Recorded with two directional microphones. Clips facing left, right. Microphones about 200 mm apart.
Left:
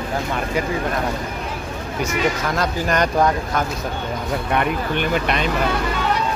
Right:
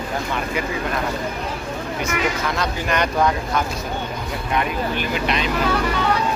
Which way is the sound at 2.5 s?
45° left (ahead or behind).